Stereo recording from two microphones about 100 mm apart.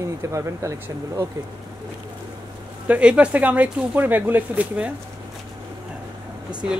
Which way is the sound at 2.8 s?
15° right (ahead or behind).